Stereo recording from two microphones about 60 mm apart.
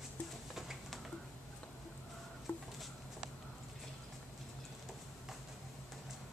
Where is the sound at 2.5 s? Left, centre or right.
Left.